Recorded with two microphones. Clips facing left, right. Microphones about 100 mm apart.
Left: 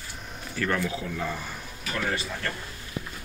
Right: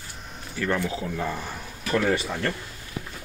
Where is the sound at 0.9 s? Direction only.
30° right (ahead or behind).